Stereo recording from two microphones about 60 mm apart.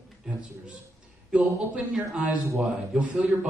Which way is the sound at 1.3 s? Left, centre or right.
Centre.